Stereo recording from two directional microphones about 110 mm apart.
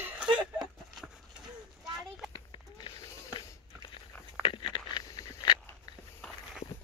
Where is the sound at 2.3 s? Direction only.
45° left (ahead or behind).